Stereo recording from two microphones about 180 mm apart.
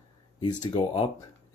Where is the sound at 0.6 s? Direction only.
25° left (ahead or behind).